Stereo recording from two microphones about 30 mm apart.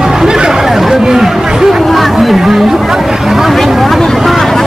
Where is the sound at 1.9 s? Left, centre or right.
Centre.